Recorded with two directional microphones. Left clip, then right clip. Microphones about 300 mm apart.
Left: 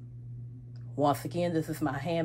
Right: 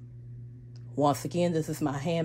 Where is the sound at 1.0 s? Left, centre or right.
Right.